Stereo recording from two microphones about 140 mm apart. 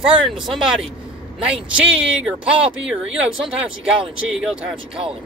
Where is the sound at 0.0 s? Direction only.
5° right (ahead or behind).